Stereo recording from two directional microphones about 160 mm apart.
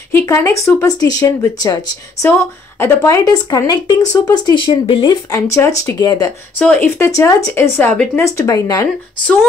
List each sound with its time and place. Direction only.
0.1 s speech: 15° left (ahead or behind)
2.2 s speech: 10° left (ahead or behind)